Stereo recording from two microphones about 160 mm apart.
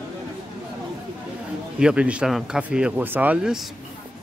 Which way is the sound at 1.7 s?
5° right (ahead or behind).